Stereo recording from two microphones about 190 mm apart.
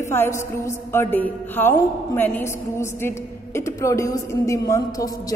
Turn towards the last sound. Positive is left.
turn(degrees=20)  # may be behind; listen again after turning